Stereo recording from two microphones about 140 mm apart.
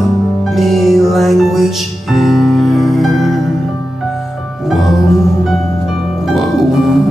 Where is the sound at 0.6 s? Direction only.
Centre (ahead or behind).